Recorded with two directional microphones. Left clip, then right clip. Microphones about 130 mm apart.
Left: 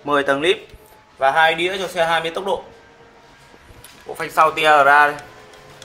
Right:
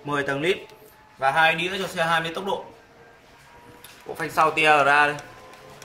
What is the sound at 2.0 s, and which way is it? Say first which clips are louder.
Speech: left 5 dB; 5° right (ahead or behind).